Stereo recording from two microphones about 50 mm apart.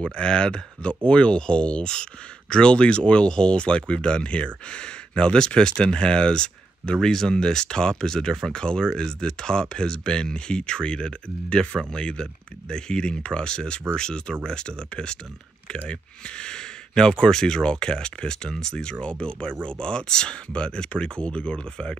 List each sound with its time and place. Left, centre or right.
0.0 s speech: centre